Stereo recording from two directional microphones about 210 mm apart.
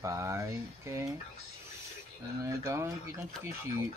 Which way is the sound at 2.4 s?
15° right (ahead or behind).